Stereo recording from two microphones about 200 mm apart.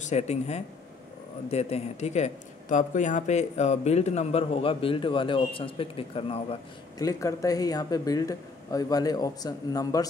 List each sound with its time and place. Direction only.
0.0 s speech: 35° left (ahead or behind)
7.0 s speech: 15° left (ahead or behind)